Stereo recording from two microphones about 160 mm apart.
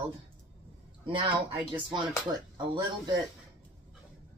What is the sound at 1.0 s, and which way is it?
Speech, 30° right (ahead or behind).